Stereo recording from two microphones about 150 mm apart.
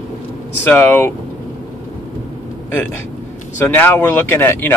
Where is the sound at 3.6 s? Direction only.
15° left (ahead or behind).